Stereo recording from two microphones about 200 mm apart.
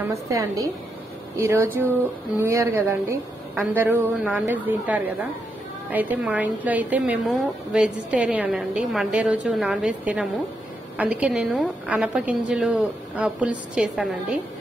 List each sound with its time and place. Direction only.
0.0 s a woman's voice: 15° right (ahead or behind)